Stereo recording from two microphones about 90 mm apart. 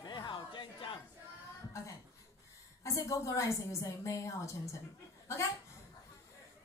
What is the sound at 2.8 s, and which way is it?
A woman's voice, 35° left (ahead or behind).